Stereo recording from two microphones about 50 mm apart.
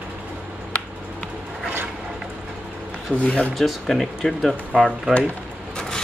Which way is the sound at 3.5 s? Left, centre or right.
Centre.